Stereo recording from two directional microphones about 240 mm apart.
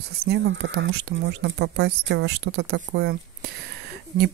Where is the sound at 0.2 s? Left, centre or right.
Right.